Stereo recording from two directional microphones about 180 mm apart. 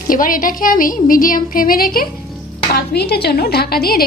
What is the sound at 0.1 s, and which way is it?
A woman's voice, 50° left (ahead or behind).